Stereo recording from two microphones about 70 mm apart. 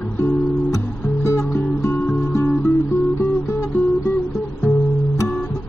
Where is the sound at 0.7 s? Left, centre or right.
Left.